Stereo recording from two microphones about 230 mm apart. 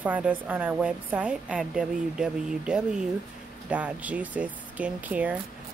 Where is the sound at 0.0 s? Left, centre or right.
Centre.